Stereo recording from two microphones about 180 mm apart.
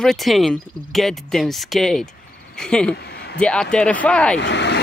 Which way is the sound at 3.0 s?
65° left (ahead or behind).